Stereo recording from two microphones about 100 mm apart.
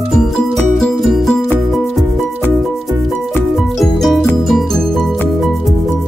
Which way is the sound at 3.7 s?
Centre (ahead or behind).